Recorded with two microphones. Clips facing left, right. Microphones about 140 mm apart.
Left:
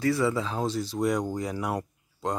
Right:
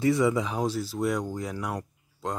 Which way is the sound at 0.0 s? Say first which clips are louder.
Right 2 dB; 20° right (ahead or behind).